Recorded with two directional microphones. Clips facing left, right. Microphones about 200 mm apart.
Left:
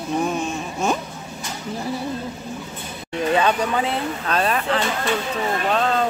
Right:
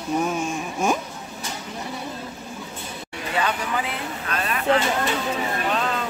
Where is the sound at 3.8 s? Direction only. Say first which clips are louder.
Left 6 dB; 35° left (ahead or behind).